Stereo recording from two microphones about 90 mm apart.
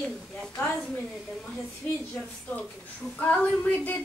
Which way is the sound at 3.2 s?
20° left (ahead or behind).